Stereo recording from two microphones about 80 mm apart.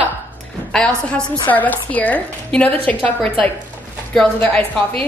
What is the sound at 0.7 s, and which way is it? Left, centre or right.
Speech, centre.